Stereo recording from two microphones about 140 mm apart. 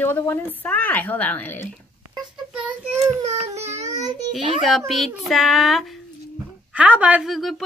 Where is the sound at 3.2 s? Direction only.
50° right (ahead or behind).